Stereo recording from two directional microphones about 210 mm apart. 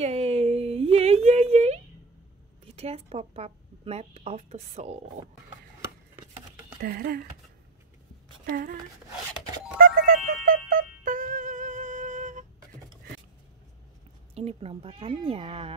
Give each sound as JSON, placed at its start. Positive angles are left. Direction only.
{"t": 0.0, "sound": "a sound", "side_deg": -30}
{"t": 2.6, "sound": "a woman's voice", "side_deg": -30}
{"t": 6.8, "sound": "speech", "side_deg": -45}
{"t": 8.5, "sound": "speech", "side_deg": -40}
{"t": 9.8, "sound": "music", "side_deg": -45}
{"t": 14.3, "sound": "a woman's voice", "side_deg": -30}